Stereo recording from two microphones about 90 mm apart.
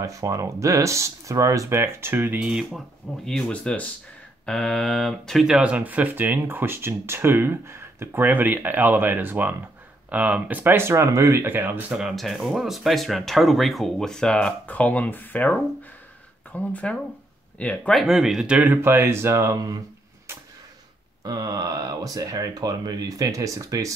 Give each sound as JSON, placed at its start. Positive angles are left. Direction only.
{"t": 0.0, "sound": "speech", "side_deg": -35}
{"t": 3.3, "sound": "speech", "side_deg": 10}
{"t": 5.6, "sound": "speech", "side_deg": -15}
{"t": 11.4, "sound": "speech", "side_deg": -20}
{"t": 12.0, "sound": "speech", "side_deg": -5}
{"t": 16.5, "sound": "speech", "side_deg": 15}
{"t": 17.9, "sound": "speech", "side_deg": -5}
{"t": 18.6, "sound": "speech", "side_deg": -20}
{"t": 21.2, "sound": "speech", "side_deg": -45}